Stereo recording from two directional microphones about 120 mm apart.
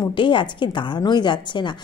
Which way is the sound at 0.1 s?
40° left (ahead or behind).